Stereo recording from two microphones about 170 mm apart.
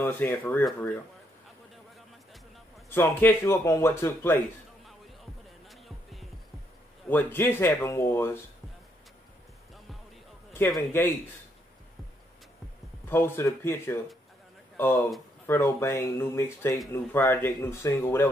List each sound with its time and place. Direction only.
0.0 s a man's voice: 10° left (ahead or behind)
2.9 s a man's voice: 10° left (ahead or behind)
4.8 s music: centre (ahead or behind)
7.1 s a man's voice: 10° left (ahead or behind)
10.9 s a man's voice: 15° left (ahead or behind)
13.1 s a man's voice: 15° left (ahead or behind)